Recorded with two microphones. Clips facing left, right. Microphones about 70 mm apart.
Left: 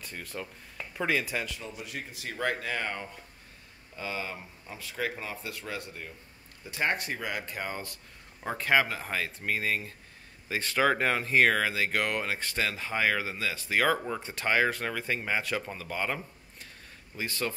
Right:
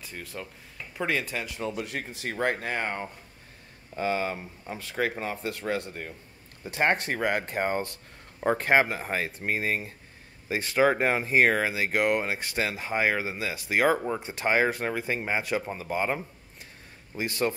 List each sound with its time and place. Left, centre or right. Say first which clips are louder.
0.0 s speech: even; centre
1.6 s speech: right 7 dB; right
10.6 s speech: right 3 dB; centre
17.2 s speech: right 5 dB; right